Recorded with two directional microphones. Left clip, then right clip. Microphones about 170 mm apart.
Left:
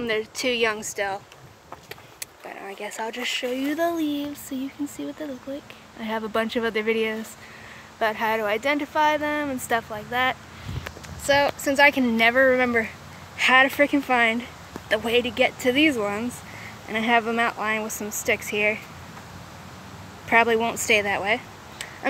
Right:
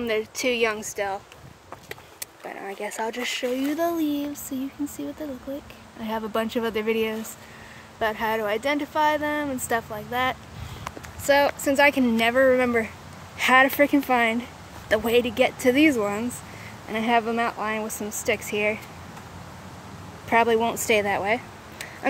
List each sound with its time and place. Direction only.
0.0 s speech: 10° right (ahead or behind)
2.4 s speech: 30° right (ahead or behind); by 12.9 s 5° right (ahead or behind)
13.4 s speech: 20° right (ahead or behind)
14.9 s speech: 20° right (ahead or behind)
16.0 s speech: 5° right (ahead or behind)
20.2 s speech: 5° right (ahead or behind)